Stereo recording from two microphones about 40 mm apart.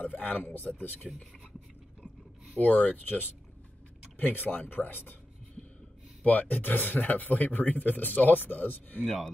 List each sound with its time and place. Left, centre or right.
0.0 s speech: left
2.6 s speech: left
3.0 s speech: left
6.2 s speech: left
9.0 s speech: centre